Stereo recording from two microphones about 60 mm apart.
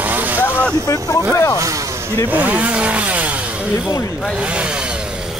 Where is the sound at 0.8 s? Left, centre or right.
Left.